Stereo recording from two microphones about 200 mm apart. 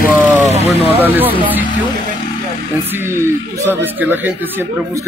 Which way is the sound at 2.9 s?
10° right (ahead or behind).